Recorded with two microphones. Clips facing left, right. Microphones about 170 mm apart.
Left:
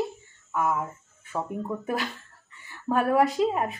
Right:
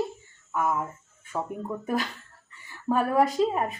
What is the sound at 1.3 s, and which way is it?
Speech, centre (ahead or behind).